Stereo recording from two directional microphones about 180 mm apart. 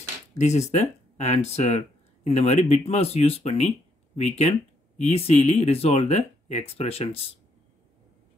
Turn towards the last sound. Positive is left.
turn(degrees=35)  # may be behind; listen again after turning